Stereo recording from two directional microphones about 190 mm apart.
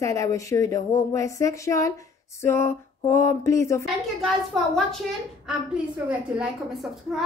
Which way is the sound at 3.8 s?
Centre (ahead or behind).